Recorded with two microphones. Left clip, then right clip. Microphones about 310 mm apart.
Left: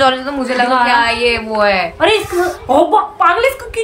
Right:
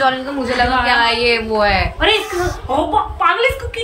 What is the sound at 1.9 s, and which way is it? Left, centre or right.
A child's voice, left.